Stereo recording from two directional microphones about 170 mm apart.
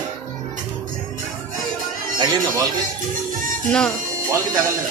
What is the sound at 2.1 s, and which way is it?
Speech, 25° right (ahead or behind).